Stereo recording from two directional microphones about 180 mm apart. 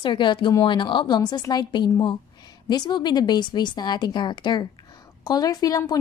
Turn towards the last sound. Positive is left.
turn(degrees=20)  # may be behind; listen again after turning